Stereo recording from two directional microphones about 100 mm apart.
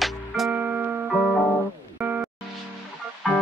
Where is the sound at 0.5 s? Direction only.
15° right (ahead or behind).